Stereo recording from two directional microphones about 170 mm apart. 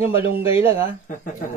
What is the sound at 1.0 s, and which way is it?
Speech, 50° left (ahead or behind).